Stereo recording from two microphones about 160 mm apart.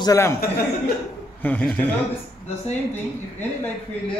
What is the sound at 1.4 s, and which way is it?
Speech, 10° left (ahead or behind).